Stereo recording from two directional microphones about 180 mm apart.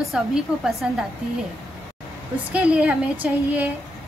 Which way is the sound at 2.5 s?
5° right (ahead or behind).